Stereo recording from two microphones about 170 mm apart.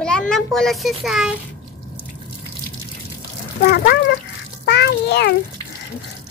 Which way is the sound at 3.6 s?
70° left (ahead or behind).